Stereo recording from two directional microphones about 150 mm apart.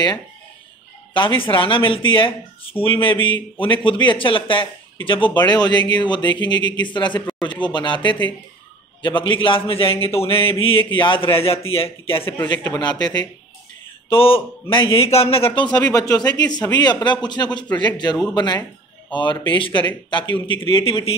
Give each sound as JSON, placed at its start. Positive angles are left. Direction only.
{"t": 1.1, "sound": "speech", "side_deg": 35}
{"t": 12.7, "sound": "a man's voice", "side_deg": 30}